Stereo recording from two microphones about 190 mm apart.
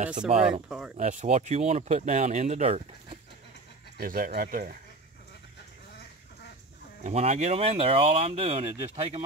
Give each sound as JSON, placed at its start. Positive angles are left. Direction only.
{"t": 0.4, "sound": "speech", "side_deg": -5}
{"t": 0.9, "sound": "speech", "side_deg": -35}
{"t": 4.0, "sound": "speech", "side_deg": -50}
{"t": 7.0, "sound": "speech", "side_deg": -35}